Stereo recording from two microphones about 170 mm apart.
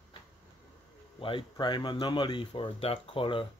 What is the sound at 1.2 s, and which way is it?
Speech, 30° left (ahead or behind).